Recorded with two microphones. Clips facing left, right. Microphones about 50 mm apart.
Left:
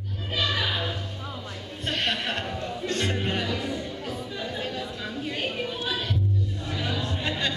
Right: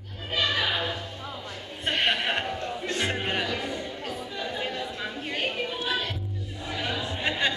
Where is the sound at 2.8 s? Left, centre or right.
Centre.